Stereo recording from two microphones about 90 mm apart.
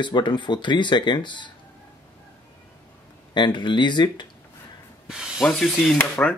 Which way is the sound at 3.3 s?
60° left (ahead or behind).